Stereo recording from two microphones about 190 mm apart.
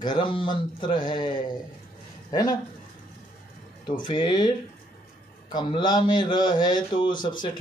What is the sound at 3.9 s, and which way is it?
Speech, 25° left (ahead or behind).